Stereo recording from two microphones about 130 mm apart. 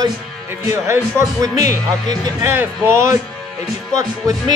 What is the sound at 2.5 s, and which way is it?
Speech, 15° right (ahead or behind).